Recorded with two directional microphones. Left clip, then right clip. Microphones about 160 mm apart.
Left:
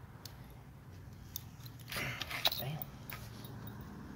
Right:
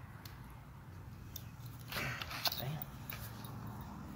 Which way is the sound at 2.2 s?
35° left (ahead or behind).